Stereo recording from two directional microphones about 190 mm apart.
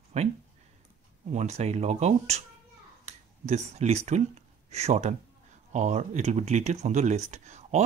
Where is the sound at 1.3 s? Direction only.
35° right (ahead or behind).